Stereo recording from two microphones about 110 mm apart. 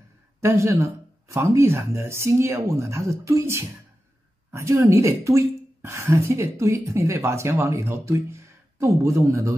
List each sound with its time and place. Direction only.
0.4 s a woman's voice: 25° right (ahead or behind)